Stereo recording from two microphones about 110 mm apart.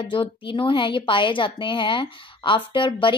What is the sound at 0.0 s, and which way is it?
A woman's voice, 50° left (ahead or behind).